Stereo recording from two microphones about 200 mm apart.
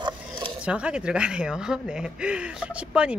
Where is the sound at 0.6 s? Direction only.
5° right (ahead or behind).